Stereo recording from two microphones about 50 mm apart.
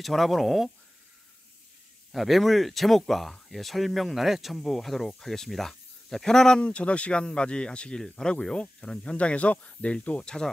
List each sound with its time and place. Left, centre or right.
0.0 s speech: centre
2.1 s speech: centre
6.6 s speech: left
9.1 s speech: left